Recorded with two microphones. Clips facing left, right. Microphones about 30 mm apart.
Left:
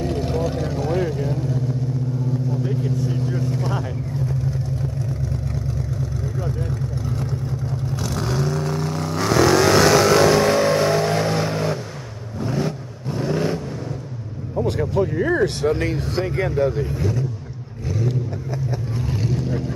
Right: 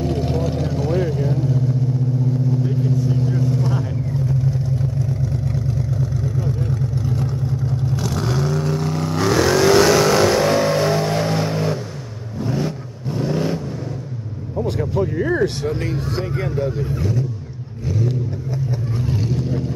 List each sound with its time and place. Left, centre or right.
0.0 s vehicle: centre
6.2 s vehicle: centre
14.6 s a sound: centre
15.7 s a sound: left
16.3 s speech: left
19.0 s vehicle: centre